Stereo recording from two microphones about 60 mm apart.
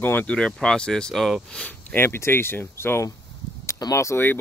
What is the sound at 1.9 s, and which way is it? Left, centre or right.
Speech, left.